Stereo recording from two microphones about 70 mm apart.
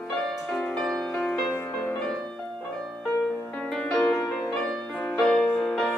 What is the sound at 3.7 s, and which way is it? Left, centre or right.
Music, centre.